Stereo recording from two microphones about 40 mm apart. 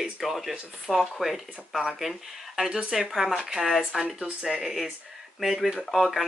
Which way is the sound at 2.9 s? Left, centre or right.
Centre.